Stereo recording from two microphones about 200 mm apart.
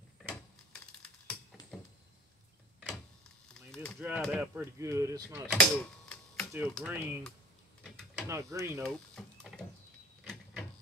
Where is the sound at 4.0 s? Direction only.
5° right (ahead or behind).